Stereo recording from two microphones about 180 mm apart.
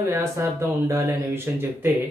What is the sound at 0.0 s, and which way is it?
Speech, 15° right (ahead or behind).